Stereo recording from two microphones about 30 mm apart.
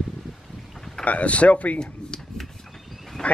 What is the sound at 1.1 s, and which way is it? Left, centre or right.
Speech, left.